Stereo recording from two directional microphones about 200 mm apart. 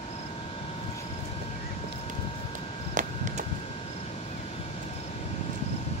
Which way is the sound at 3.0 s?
40° right (ahead or behind).